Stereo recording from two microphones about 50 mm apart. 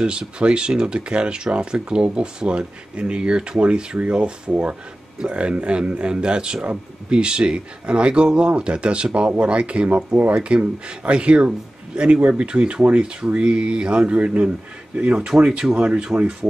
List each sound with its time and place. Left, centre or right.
0.0 s speech: centre